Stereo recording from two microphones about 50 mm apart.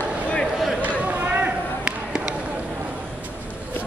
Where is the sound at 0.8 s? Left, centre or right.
Right.